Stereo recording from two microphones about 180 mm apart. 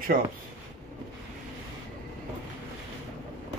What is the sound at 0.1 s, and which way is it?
Speech, 50° right (ahead or behind).